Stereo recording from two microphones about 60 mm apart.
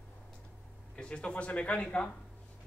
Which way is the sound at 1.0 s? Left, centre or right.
Centre.